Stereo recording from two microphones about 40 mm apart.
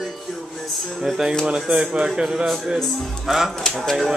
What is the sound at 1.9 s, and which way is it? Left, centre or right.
Speech, right.